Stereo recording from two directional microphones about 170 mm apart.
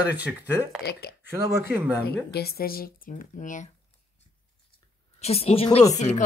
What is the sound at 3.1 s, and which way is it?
Speech, 50° left (ahead or behind).